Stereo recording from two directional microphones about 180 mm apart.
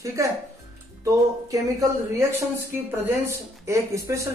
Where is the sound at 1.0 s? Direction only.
20° right (ahead or behind).